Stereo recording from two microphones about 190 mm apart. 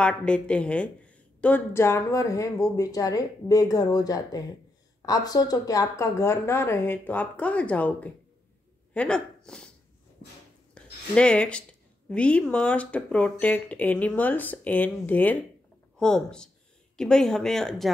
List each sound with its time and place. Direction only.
0.0 s a woman's voice: 5° left (ahead or behind)
10.7 s a sound: 5° left (ahead or behind)
12.1 s a woman's voice: 5° left (ahead or behind)